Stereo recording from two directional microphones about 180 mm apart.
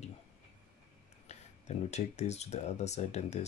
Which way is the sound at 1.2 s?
40° left (ahead or behind).